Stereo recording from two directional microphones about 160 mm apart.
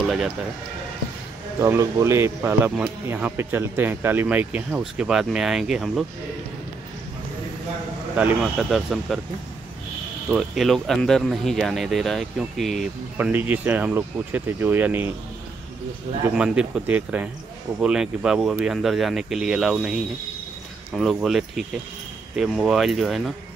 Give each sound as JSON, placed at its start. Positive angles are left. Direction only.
{"t": 1.6, "sound": "speech", "side_deg": -20}
{"t": 8.2, "sound": "speech", "side_deg": -10}
{"t": 10.3, "sound": "speech", "side_deg": 0}
{"t": 13.2, "sound": "speech", "side_deg": -10}
{"t": 16.3, "sound": "speech", "side_deg": -5}